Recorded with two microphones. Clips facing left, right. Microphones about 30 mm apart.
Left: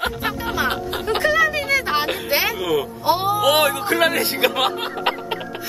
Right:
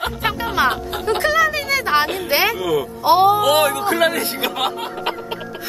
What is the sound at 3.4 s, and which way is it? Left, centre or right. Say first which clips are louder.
Speech: right 1 dB; left.